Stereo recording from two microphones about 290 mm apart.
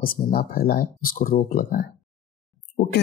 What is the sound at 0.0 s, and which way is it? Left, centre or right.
Speech, left.